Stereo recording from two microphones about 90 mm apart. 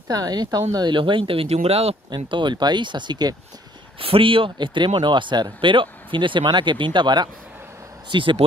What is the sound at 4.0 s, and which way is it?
Speech, 85° right.